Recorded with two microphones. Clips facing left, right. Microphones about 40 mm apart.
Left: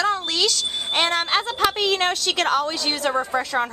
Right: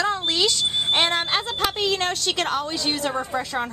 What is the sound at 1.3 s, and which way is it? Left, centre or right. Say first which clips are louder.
Speech: left 3 dB; centre.